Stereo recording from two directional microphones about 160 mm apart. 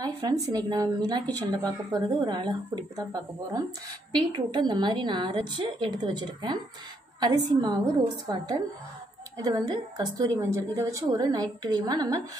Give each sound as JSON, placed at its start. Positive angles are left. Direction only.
{"t": 0.2, "sound": "speech", "side_deg": -25}